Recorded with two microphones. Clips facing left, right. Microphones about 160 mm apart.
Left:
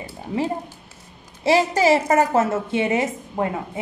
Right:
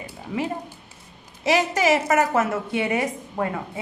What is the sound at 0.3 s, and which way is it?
A woman's voice, 30° left (ahead or behind).